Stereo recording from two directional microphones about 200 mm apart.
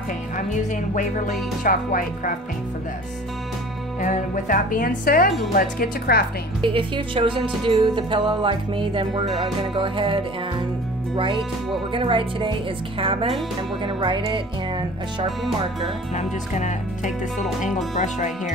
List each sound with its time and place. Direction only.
0.9 s speech: 40° left (ahead or behind)
4.0 s speech: 40° left (ahead or behind)
6.6 s music: 25° right (ahead or behind)
11.9 s music: 25° right (ahead or behind)
15.2 s music: centre (ahead or behind)
16.2 s speech: 35° left (ahead or behind)